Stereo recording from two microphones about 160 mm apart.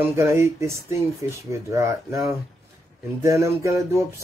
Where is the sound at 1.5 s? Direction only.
20° right (ahead or behind).